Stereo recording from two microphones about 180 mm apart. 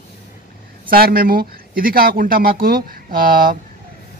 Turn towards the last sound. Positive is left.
turn(degrees=-50)  # may be behind; listen again after turning